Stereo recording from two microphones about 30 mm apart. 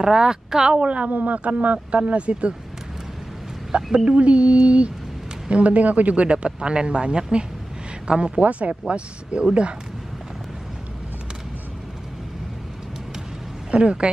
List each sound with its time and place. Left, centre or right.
0.0 s speech: right
0.7 s speech: right
1.1 s speech: right
3.7 s speech: right
6.2 s speech: right
8.4 s speech: right
8.8 s speech: right
13.7 s a woman's voice: right